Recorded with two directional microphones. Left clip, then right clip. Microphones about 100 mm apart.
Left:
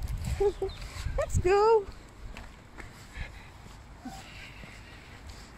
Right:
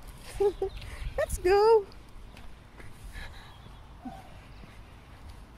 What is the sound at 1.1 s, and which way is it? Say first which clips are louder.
Speech: right 1 dB; 55° right (ahead or behind).